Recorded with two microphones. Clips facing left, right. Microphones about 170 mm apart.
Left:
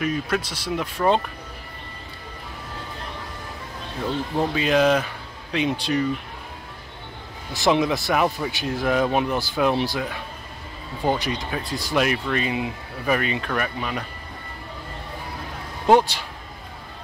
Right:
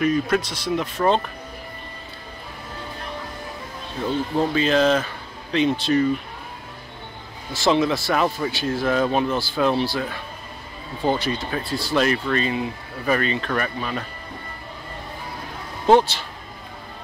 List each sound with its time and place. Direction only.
0.0 s speech: 5° left (ahead or behind)
4.4 s speech: 10° left (ahead or behind)
7.5 s speech: 20° left (ahead or behind)
11.1 s speech: 15° left (ahead or behind)
15.9 s speech: 10° left (ahead or behind)